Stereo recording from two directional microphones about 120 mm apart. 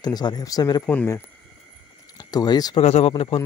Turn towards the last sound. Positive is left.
turn(degrees=55)  # may be behind; listen again after turning